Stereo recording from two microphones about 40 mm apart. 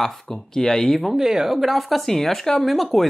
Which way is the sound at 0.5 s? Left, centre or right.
Centre.